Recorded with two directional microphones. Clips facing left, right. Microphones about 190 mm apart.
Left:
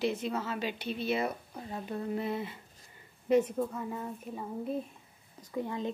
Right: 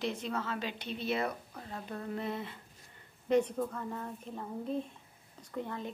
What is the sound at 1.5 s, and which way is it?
Speech, 15° left (ahead or behind).